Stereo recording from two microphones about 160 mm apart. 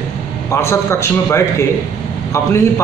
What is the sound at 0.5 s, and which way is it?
A man's voice, 15° left (ahead or behind).